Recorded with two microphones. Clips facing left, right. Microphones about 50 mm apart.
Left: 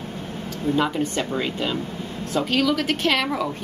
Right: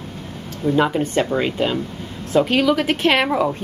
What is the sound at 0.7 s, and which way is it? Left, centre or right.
Speech, right.